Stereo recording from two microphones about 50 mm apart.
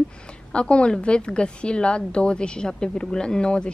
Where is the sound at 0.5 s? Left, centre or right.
Left.